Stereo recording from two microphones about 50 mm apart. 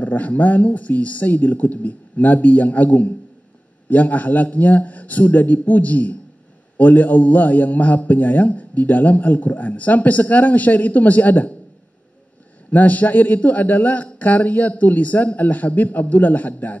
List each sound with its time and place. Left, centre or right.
0.0 s a man's voice: left
12.7 s a man's voice: left